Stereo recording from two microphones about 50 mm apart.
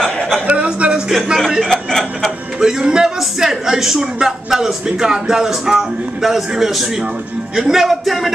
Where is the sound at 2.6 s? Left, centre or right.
Centre.